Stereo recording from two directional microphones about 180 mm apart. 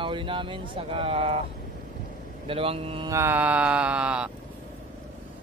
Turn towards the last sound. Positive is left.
turn(degrees=-5)  # may be behind; listen again after turning